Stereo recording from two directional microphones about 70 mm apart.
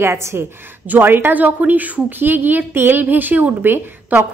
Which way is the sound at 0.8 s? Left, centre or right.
Right.